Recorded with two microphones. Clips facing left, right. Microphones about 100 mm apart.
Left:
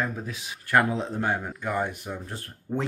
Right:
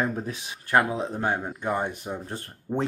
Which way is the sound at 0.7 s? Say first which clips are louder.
Even; 15° right (ahead or behind).